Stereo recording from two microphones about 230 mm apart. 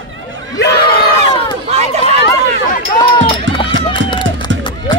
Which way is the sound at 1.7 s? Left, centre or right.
Right.